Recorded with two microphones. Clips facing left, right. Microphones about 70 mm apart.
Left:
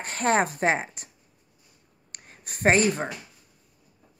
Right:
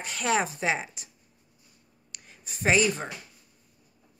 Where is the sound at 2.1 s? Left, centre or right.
Left.